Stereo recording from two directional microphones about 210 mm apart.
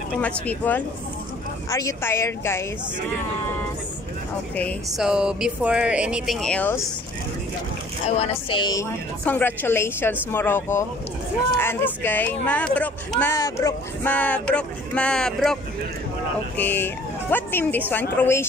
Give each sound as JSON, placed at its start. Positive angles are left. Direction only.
{"t": 0.2, "sound": "speech", "side_deg": 10}
{"t": 4.6, "sound": "speech", "side_deg": 5}
{"t": 8.2, "sound": "a woman's voice", "side_deg": 25}
{"t": 9.2, "sound": "speech", "side_deg": 10}